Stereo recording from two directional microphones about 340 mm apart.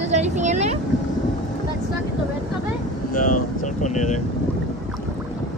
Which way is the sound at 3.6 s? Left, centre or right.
Left.